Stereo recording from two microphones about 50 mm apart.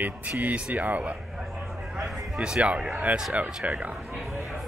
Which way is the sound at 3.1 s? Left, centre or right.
Right.